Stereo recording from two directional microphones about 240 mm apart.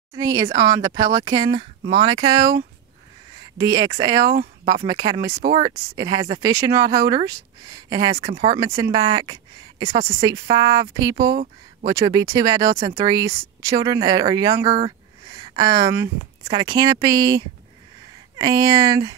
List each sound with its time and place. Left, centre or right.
0.1 s speech: centre
3.5 s speech: centre